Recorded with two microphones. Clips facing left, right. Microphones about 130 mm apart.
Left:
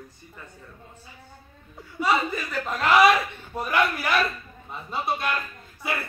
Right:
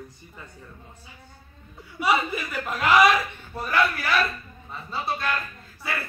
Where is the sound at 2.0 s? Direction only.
10° right (ahead or behind).